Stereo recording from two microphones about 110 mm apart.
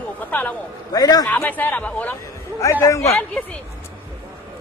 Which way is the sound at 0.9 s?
35° left (ahead or behind).